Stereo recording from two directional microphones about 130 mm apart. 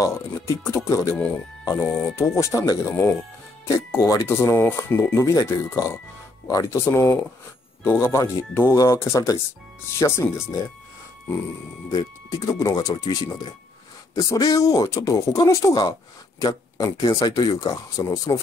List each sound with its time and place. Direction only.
0.0 s speech: 20° left (ahead or behind)
11.9 s speech: 30° left (ahead or behind)